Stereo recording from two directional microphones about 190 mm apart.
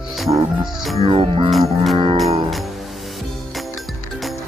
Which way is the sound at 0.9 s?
30° right (ahead or behind).